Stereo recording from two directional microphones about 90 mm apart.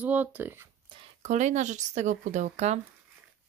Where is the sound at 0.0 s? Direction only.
20° right (ahead or behind).